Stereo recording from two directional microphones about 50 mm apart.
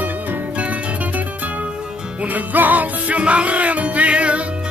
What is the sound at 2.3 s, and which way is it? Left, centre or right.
Music, right.